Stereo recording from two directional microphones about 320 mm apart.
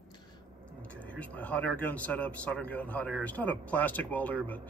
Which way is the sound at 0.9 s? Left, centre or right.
Centre.